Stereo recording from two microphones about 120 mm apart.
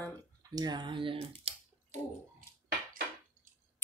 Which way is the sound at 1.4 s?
75° right (ahead or behind).